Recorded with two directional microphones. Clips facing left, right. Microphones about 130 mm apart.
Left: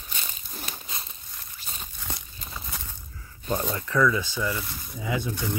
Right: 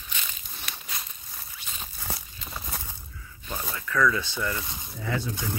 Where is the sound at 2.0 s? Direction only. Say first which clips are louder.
Right 2 dB; 5° right (ahead or behind).